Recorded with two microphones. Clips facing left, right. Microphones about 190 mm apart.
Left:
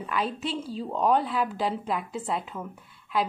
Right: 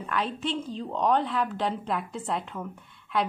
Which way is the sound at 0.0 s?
5° left (ahead or behind).